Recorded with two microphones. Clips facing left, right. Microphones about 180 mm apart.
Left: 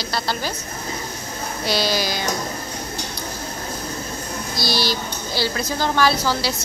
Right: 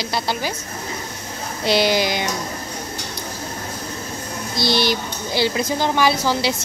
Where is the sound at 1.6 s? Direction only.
20° right (ahead or behind).